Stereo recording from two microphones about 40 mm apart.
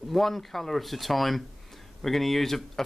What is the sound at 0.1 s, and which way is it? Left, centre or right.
Speech, centre.